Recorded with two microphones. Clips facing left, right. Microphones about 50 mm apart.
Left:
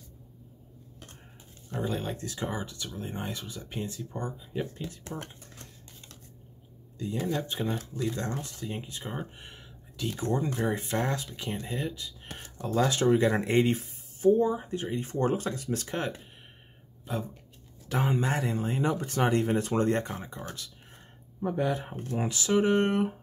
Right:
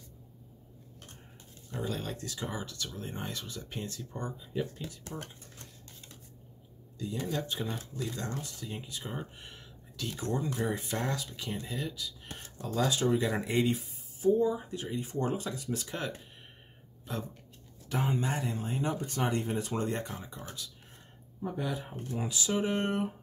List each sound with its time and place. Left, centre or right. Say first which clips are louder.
1.9 s speech: left 4 dB; left
7.0 s speech: left 4 dB; left
7.9 s speech: left 6 dB; centre
8.2 s speech: left 4 dB; left; by 10.3 s centre
10.3 s speech: left 3 dB; left
14.6 s speech: left 4 dB; left
15.0 s speech: left 5 dB; left
17.0 s speech: left 4 dB; centre
17.8 s speech: left 4 dB; left
21.4 s speech: left 6 dB; left